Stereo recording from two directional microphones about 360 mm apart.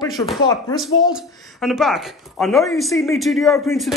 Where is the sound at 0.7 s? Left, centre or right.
Centre.